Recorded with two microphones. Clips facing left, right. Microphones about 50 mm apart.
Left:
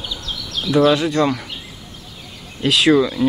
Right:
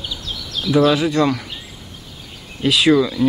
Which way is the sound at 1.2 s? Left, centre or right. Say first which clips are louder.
Even; centre.